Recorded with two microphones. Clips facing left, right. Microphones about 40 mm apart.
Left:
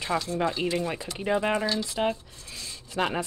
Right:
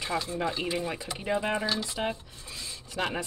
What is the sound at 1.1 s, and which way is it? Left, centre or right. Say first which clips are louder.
Dishes: left 4 dB; centre.